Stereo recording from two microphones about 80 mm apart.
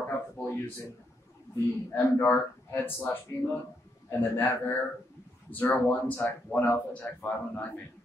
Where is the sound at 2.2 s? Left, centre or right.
Left.